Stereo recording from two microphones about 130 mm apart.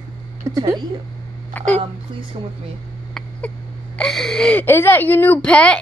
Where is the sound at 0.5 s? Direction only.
30° right (ahead or behind).